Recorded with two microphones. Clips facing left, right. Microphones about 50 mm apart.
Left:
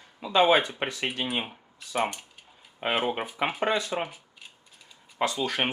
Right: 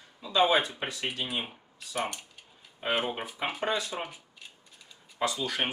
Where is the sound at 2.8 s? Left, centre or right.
Left.